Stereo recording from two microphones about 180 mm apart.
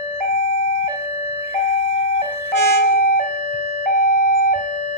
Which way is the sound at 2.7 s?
55° left (ahead or behind).